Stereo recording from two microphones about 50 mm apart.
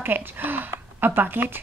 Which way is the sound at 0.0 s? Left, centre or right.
Right.